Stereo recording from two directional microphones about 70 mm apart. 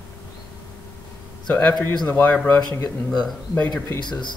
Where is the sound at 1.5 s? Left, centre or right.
Left.